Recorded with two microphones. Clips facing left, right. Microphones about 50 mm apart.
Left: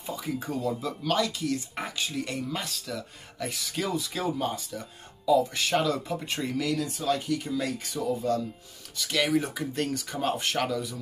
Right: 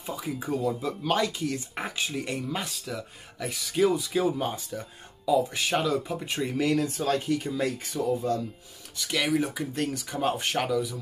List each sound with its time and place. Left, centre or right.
0.0 s speech: centre
1.0 s speech: right
3.3 s speech: centre
4.4 s speech: right; by 6.4 s centre
6.4 s speech: right
6.7 s speech: right
8.0 s speech: left
9.0 s speech: centre
10.2 s speech: right
10.6 s speech: centre